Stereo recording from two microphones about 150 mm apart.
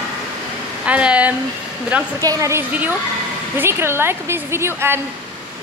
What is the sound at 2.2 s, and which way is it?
A woman's voice, 20° right (ahead or behind).